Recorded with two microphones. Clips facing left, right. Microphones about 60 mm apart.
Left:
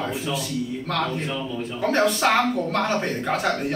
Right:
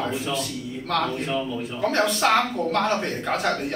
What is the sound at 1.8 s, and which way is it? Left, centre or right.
Speech, centre.